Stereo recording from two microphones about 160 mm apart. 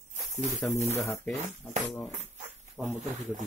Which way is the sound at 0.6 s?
5° left (ahead or behind).